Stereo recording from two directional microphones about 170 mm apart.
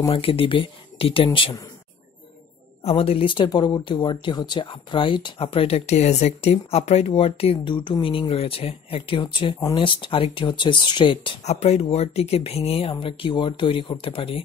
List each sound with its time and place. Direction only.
0.1 s speech: 35° left (ahead or behind)
2.8 s speech: 35° left (ahead or behind)